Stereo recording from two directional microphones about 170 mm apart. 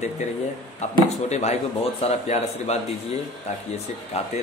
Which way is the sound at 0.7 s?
40° left (ahead or behind).